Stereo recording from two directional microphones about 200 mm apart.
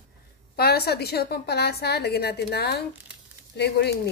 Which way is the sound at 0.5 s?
50° left (ahead or behind).